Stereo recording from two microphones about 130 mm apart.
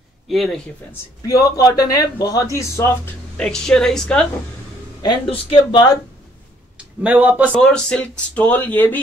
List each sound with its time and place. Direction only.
0.3 s speech: centre (ahead or behind)
1.2 s a man's voice: 25° left (ahead or behind)
3.3 s speech: 5° left (ahead or behind)
5.3 s speech: 40° left (ahead or behind)
7.0 s a man's voice: 10° right (ahead or behind)
7.5 s speech: 5° left (ahead or behind)